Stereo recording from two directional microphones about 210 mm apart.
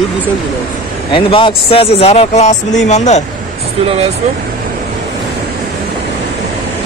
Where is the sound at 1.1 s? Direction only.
25° left (ahead or behind).